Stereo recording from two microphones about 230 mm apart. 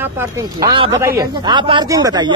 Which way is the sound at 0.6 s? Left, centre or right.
Right.